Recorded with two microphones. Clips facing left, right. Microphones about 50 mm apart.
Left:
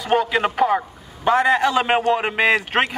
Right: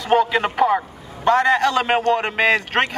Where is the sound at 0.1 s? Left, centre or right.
Centre.